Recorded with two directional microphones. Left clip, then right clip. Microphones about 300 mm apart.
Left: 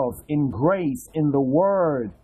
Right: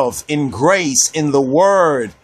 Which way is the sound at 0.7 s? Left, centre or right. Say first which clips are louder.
Right 10 dB; centre.